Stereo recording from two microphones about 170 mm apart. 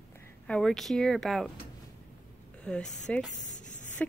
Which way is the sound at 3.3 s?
45° left (ahead or behind).